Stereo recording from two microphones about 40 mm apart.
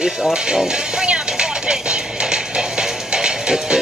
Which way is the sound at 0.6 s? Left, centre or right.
Centre.